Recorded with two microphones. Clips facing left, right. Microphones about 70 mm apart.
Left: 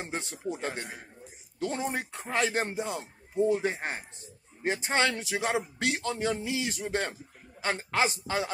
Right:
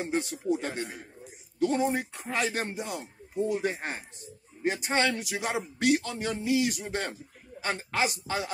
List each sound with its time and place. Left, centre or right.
0.0 s speech: left